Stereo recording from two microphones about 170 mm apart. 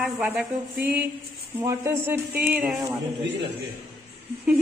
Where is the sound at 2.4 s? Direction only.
5° right (ahead or behind).